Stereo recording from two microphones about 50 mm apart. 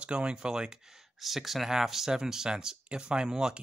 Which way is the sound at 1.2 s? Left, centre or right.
Centre.